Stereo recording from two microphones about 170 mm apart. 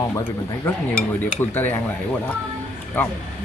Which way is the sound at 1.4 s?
10° left (ahead or behind).